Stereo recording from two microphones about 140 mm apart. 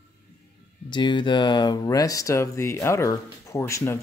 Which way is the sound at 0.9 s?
35° left (ahead or behind).